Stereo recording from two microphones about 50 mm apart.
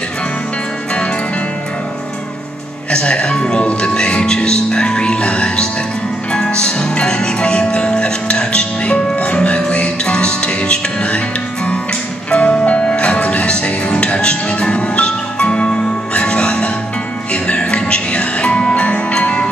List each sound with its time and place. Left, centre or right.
2.9 s speech: centre
6.3 s music: centre